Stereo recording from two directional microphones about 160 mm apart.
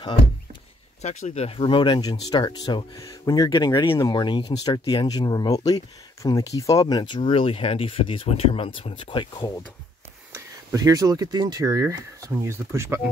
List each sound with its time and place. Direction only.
1.0 s speech: 45° left (ahead or behind)
10.3 s speech: 20° right (ahead or behind)